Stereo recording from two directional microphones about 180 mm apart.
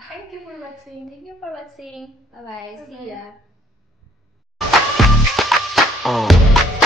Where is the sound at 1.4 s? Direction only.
Centre (ahead or behind).